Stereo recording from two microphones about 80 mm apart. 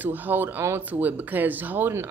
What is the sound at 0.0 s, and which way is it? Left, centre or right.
A man's voice, right.